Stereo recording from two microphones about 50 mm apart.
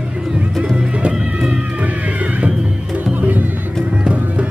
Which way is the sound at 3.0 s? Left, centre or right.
Right.